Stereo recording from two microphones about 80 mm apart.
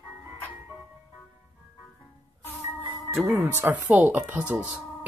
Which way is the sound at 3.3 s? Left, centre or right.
Right.